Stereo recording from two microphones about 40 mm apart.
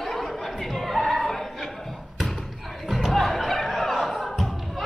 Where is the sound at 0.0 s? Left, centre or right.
Centre.